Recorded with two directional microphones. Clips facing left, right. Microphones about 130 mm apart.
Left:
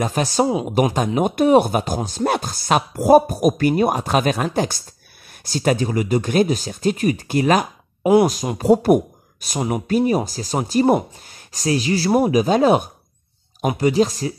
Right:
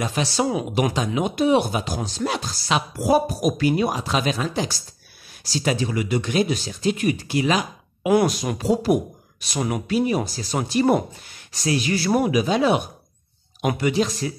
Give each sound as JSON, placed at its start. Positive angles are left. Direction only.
{"t": 0.0, "sound": "speech", "side_deg": 45}
{"t": 9.6, "sound": "speech", "side_deg": 25}
{"t": 9.8, "sound": "speech", "side_deg": 40}